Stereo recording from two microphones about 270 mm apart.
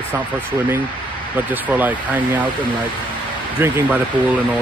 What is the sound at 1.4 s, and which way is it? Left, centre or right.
Speech, centre.